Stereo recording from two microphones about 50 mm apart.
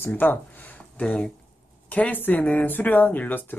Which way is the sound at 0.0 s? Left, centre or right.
Left.